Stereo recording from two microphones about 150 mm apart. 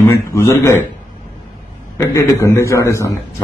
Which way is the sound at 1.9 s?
20° left (ahead or behind).